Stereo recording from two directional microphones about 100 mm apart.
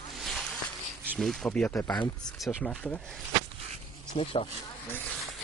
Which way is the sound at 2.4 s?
Centre (ahead or behind).